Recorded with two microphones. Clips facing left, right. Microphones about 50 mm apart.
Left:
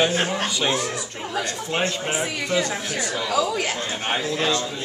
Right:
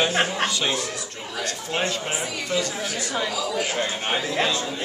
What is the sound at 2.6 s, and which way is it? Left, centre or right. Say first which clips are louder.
Speech: left 2 dB; left.